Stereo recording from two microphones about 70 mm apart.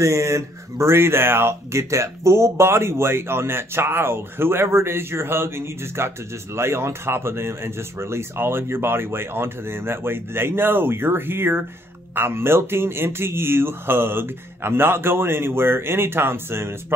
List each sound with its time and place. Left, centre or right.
0.0 s speech: right